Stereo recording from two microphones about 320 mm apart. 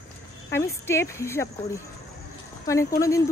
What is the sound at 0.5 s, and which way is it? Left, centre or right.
Speech, centre.